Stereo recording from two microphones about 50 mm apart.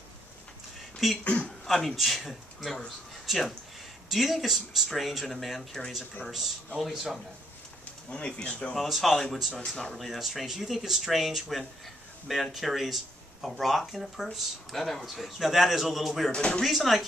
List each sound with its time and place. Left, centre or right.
1.2 s speech: left
1.7 s speech: centre
6.8 s speech: centre
8.1 s speech: centre
8.7 s speech: centre
9.1 s speech: centre
9.9 s speech: centre
16.3 s speech: centre
16.6 s speech: centre